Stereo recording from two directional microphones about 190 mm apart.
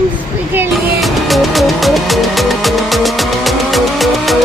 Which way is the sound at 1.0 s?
Centre (ahead or behind).